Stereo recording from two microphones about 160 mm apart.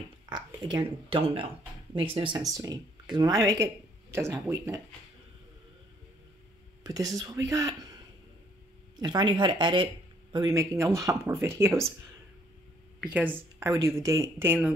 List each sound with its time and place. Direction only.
0.3 s speech: 25° right (ahead or behind)
6.8 s speech: 20° right (ahead or behind)
8.9 s speech: 25° right (ahead or behind)
13.0 s speech: 10° right (ahead or behind)